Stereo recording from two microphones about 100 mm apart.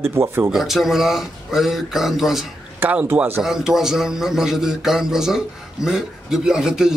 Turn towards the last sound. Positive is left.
turn(degrees=-5)  # may be behind; listen again after turning